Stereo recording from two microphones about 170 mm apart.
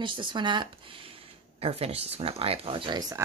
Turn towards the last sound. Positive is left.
turn(degrees=-30)  # may be behind; listen again after turning